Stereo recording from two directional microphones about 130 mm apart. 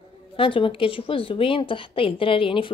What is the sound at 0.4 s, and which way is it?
A woman's voice, 40° left (ahead or behind).